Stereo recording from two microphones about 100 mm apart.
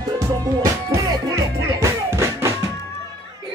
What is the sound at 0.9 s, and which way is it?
Music, 35° right (ahead or behind).